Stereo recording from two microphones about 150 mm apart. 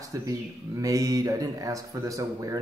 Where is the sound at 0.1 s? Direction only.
20° right (ahead or behind).